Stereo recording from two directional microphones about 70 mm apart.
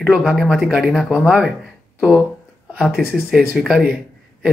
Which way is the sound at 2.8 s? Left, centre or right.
Centre.